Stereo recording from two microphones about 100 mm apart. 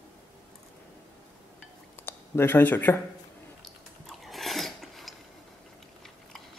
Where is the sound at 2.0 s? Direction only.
20° left (ahead or behind).